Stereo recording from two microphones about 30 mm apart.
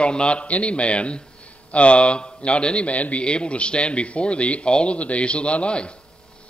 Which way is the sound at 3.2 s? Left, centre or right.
Left.